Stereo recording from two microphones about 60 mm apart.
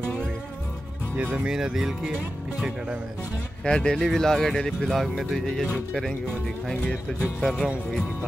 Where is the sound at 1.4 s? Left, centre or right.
Centre.